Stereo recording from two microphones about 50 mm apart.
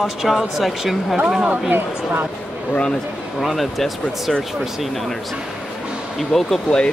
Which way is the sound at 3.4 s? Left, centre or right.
Centre.